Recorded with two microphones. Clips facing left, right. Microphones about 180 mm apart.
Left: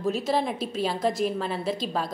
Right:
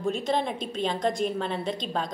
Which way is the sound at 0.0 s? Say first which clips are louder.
Left 1 dB; 5° left (ahead or behind).